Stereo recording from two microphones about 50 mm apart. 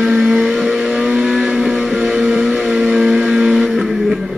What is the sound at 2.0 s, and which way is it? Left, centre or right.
Music, centre.